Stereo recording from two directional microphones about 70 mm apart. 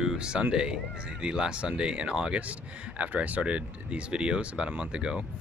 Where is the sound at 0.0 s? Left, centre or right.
Centre.